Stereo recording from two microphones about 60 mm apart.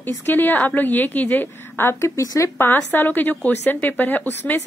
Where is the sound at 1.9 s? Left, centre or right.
Left.